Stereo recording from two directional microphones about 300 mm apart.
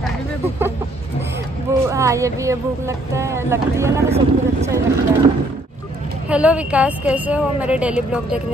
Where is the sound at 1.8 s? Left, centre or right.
Centre.